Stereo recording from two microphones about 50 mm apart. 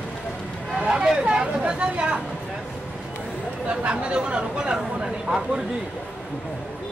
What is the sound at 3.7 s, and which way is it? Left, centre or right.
Speech, right.